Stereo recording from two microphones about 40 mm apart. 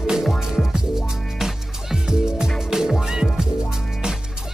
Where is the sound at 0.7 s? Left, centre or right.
Centre.